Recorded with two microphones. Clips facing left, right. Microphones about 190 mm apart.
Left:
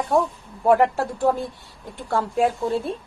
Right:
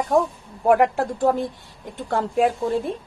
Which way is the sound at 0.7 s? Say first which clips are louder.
Even; 15° right (ahead or behind).